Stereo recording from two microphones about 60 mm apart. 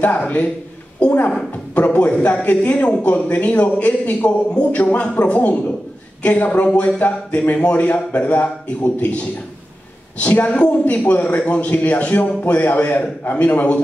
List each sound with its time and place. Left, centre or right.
0.0 s a man's voice: left
1.8 s a man's voice: left